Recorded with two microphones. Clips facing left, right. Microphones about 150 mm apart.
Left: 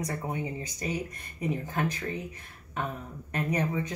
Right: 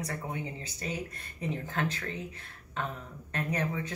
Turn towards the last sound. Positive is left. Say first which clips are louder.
# left 3 dB
turn(degrees=15)  # may be behind; listen again after turning